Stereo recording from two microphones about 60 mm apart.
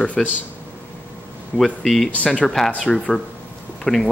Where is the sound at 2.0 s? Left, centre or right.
Left.